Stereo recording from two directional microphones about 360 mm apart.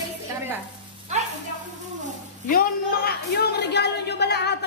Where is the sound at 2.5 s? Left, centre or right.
Left.